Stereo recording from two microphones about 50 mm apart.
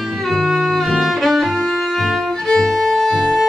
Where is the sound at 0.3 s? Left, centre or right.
Centre.